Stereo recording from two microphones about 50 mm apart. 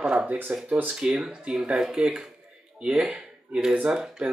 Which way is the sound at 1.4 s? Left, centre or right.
Right.